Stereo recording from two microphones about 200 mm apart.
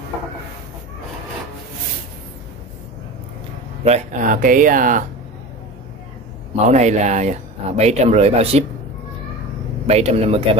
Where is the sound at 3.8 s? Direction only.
35° right (ahead or behind).